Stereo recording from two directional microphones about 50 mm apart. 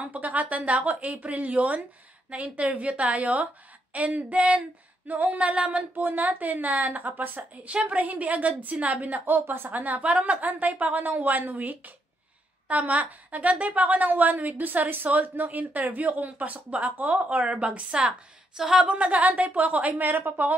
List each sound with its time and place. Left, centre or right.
0.0 s female singing: right
5.9 s a woman's voice: right
18.6 s female singing: centre; by 20.3 s right